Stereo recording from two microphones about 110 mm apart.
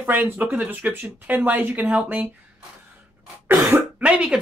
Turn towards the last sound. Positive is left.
turn(degrees=-10)  # may be behind; listen again after turning